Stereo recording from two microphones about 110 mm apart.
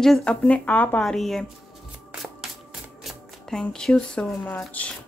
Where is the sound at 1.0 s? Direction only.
Centre (ahead or behind).